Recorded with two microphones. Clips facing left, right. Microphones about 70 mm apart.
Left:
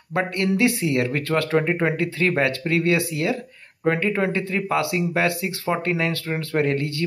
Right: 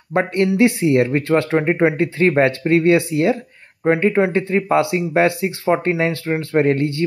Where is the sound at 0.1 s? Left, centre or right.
Right.